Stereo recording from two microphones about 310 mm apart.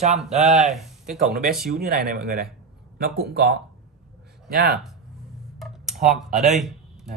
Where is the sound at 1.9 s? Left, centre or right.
Right.